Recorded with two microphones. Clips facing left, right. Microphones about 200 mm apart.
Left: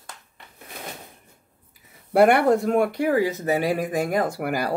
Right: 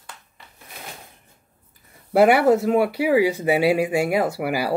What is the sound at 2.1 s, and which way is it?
Speech, 5° right (ahead or behind).